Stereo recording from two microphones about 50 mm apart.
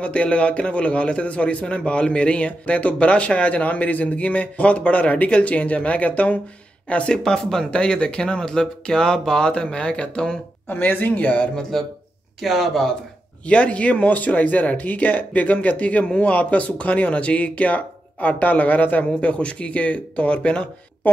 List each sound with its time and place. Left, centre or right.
0.0 s speech: left
7.2 s speech: centre
10.7 s speech: left
11.7 s speech: centre
13.5 s speech: left